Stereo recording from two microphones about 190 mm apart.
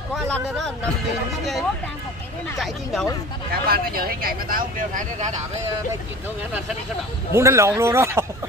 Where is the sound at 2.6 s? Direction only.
Centre (ahead or behind).